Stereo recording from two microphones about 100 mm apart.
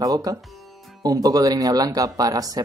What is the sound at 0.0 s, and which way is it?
Speech, 40° right (ahead or behind).